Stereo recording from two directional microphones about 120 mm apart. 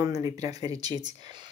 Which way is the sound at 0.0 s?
30° right (ahead or behind).